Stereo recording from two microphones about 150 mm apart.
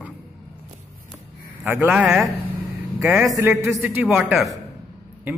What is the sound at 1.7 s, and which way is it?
A man's voice, 10° right (ahead or behind).